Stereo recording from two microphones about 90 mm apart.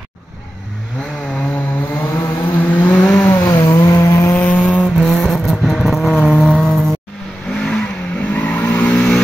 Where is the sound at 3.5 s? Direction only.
45° left (ahead or behind).